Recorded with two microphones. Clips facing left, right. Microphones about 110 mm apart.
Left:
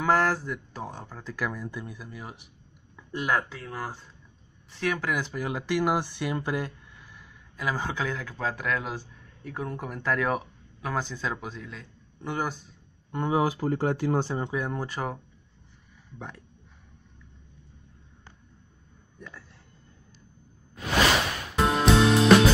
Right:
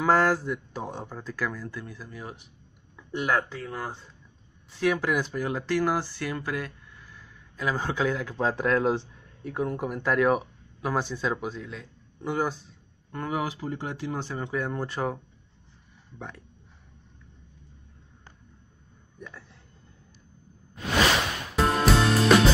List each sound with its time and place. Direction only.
0.0 s speech: 5° right (ahead or behind)
1.3 s speech: 15° left (ahead or behind)
4.7 s speech: 10° right (ahead or behind); by 6.7 s 25° left (ahead or behind)
7.2 s a sound: 5° left (ahead or behind)
8.2 s speech: 20° right (ahead or behind)
9.4 s speech: 10° right (ahead or behind)
13.1 s speech: 25° left (ahead or behind)
13.5 s speech: 45° left (ahead or behind)
14.5 s speech: 10° left (ahead or behind)
21.5 s music: centre (ahead or behind)